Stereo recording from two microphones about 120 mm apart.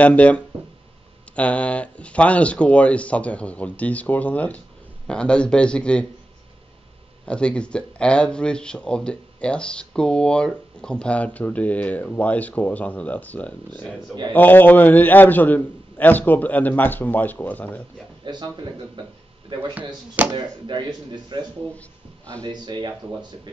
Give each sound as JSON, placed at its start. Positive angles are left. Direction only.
{"t": 0.0, "sound": "a man's voice", "side_deg": 10}
{"t": 7.2, "sound": "a man's voice", "side_deg": 10}
{"t": 18.2, "sound": "speech", "side_deg": -35}
{"t": 19.5, "sound": "speech", "side_deg": -40}